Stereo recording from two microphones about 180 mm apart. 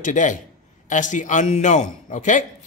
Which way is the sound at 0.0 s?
45° left (ahead or behind).